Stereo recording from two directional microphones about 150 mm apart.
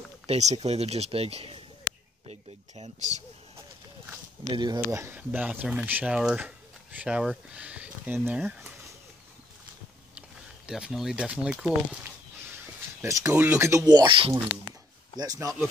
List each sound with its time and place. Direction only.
0.3 s speech: 45° right (ahead or behind)
2.2 s a sound: 45° right (ahead or behind)
4.5 s speech: 25° right (ahead or behind)
4.8 s speech: 15° right (ahead or behind)
10.7 s speech: 5° right (ahead or behind)
13.0 s speech: 15° right (ahead or behind); by 14.3 s 35° right (ahead or behind)
15.1 s speech: 25° right (ahead or behind)